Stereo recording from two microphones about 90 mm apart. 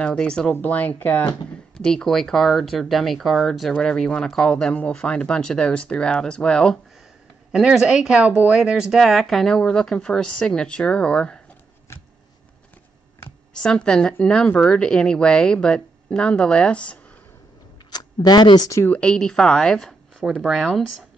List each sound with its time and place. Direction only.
0.0 s speech: 10° left (ahead or behind)
1.8 s speech: 10° left (ahead or behind)
7.5 s speech: 10° right (ahead or behind); by 11.4 s 10° left (ahead or behind)
13.5 s speech: 10° left (ahead or behind)
17.9 s speech: 50° left (ahead or behind)
18.9 s speech: 10° left (ahead or behind)